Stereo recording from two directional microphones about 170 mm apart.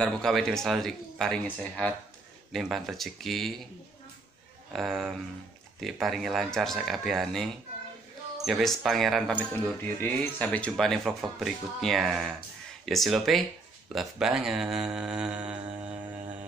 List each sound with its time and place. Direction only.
0.0 s speech: centre (ahead or behind)
4.7 s speech: centre (ahead or behind)
8.5 s speech: centre (ahead or behind)